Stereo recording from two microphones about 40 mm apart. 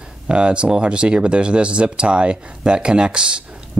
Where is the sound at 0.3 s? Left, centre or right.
Right.